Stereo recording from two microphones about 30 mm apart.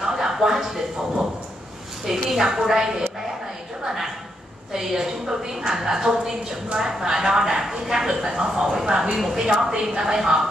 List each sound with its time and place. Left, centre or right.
0.0 s a sound: centre
0.7 s a woman's voice: centre
9.5 s a woman's voice: right